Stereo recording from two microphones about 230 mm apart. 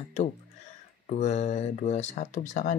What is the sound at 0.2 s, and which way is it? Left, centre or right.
Speech, left.